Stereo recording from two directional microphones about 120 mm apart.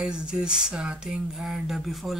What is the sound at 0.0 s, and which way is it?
Speech, 5° right (ahead or behind).